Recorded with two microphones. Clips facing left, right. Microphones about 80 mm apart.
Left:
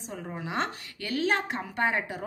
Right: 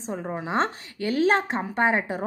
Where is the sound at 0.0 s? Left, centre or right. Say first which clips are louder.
Right 6 dB; right.